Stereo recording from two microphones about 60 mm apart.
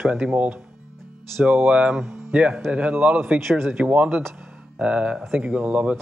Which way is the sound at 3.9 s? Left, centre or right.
Right.